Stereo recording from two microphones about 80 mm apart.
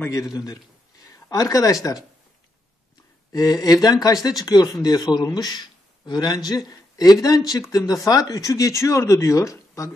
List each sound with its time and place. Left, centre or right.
0.1 s a man's voice: left
3.3 s a man's voice: left